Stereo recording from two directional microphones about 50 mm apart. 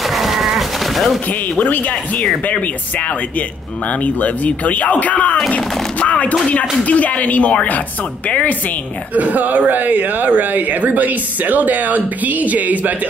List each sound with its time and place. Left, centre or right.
0.0 s a sound: centre
1.6 s speech: left
9.1 s speech: right